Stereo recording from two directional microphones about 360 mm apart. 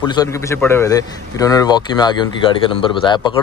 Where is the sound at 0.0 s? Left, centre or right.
Centre.